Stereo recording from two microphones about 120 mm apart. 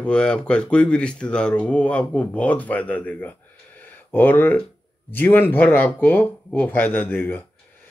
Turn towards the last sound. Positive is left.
turn(degrees=15)  # may be behind; listen again after turning